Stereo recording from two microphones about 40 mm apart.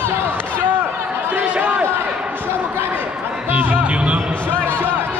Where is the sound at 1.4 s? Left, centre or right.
Right.